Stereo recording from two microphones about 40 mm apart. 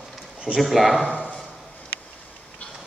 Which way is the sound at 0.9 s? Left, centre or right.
Left.